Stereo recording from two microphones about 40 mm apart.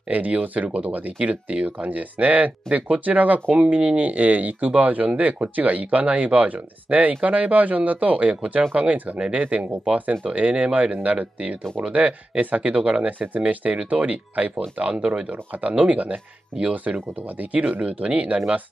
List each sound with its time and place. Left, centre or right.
0.1 s speech: right
3.5 s speech: right
13.6 s speech: right
14.0 s speech: right
15.0 s speech: centre
15.2 s speech: right